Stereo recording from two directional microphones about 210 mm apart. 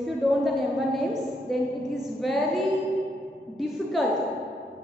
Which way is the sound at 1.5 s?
Centre (ahead or behind).